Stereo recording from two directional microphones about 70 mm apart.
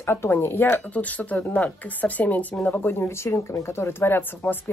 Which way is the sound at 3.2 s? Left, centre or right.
Left.